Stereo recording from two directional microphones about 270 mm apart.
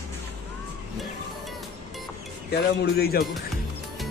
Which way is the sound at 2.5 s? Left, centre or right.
Left.